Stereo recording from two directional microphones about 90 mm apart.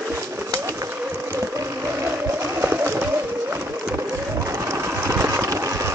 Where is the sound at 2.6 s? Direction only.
25° right (ahead or behind).